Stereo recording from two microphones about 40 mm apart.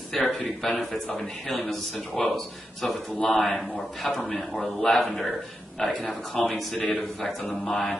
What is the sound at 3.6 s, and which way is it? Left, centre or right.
A man's voice, centre.